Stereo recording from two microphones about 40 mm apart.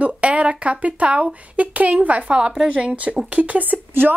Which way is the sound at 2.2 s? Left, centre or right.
Right.